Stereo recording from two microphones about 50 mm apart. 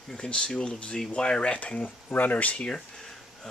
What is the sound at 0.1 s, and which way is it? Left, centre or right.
Speech, centre.